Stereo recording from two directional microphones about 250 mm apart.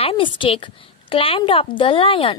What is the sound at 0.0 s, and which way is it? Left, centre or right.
A woman's voice, centre.